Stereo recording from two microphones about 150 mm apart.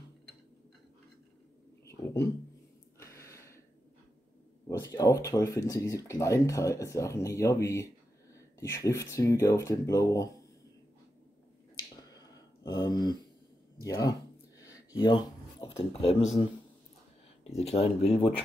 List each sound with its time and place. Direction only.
3.0 s gasp: 20° left (ahead or behind)
4.6 s speech: 25° left (ahead or behind)
12.0 s a sound: 25° left (ahead or behind)
13.8 s speech: 20° left (ahead or behind); by 16.4 s 40° left (ahead or behind)
17.6 s speech: 45° left (ahead or behind)